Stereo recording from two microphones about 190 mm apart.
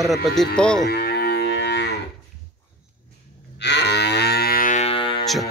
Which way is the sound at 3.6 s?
65° left (ahead or behind).